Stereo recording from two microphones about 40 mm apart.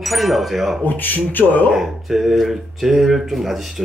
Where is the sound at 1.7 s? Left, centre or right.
Centre.